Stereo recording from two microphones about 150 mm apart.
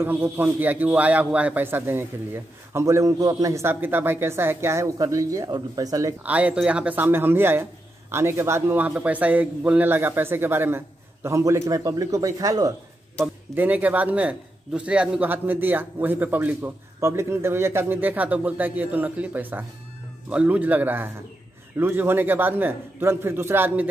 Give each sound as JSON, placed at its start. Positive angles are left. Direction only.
{"t": 0.0, "sound": "a man's voice", "side_deg": -15}
{"t": 6.2, "sound": "a man's voice", "side_deg": -10}
{"t": 13.6, "sound": "a man's voice", "side_deg": -10}